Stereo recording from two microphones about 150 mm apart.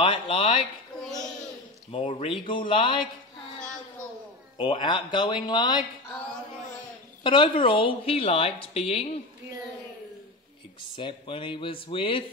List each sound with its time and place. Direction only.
0.0 s a woman's voice: 35° left (ahead or behind)
1.9 s a woman's voice: 40° left (ahead or behind)
4.6 s speech: 30° left (ahead or behind)
7.2 s a woman's voice: 35° left (ahead or behind)
11.0 s a woman's voice: 35° left (ahead or behind)